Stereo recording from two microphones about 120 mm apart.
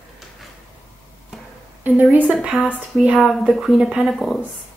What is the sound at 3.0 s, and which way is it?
A woman's voice, 5° right (ahead or behind).